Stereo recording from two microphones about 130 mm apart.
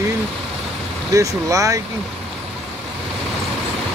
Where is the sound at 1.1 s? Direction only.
25° right (ahead or behind).